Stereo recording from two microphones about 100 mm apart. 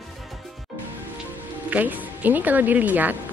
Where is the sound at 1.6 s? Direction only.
15° right (ahead or behind).